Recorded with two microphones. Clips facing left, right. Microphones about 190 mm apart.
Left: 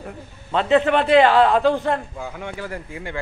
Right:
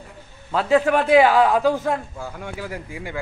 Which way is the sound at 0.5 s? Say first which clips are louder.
Left 1 dB; 5° right (ahead or behind).